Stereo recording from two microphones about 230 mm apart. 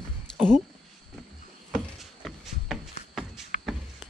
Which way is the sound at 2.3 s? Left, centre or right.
Centre.